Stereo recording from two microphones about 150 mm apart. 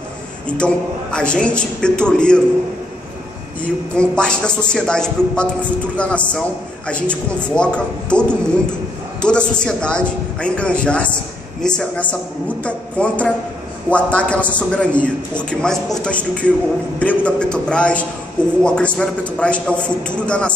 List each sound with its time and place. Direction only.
0.5 s a man's voice: 5° left (ahead or behind)
3.9 s a man's voice: 5° left (ahead or behind)